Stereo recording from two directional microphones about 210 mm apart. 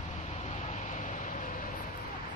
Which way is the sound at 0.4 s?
35° left (ahead or behind).